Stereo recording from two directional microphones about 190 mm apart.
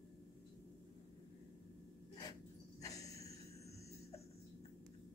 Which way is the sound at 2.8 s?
20° left (ahead or behind).